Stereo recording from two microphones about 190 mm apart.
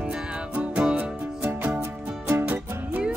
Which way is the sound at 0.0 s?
5° right (ahead or behind).